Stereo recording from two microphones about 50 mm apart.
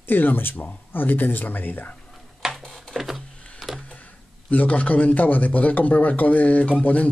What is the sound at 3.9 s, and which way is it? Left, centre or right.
A man's voice, left.